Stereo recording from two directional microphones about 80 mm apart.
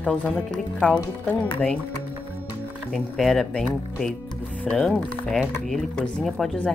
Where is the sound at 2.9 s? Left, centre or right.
Centre.